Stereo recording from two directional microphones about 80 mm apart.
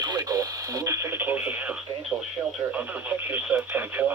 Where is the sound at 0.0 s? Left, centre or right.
Right.